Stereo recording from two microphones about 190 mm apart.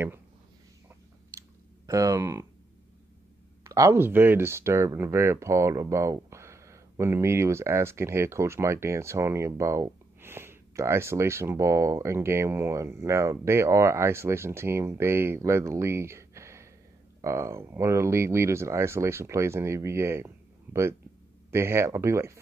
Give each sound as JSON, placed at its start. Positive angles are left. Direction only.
{"t": 1.9, "sound": "speech", "side_deg": -15}
{"t": 3.6, "sound": "speech", "side_deg": -15}